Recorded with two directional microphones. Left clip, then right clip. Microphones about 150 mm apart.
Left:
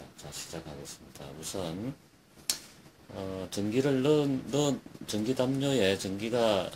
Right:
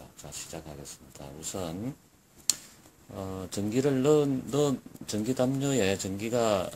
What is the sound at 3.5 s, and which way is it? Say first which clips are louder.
Speech: right 1 dB; 90° right.